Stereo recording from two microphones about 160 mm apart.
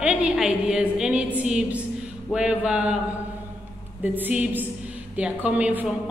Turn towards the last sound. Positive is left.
turn(degrees=-5)  # may be behind; listen again after turning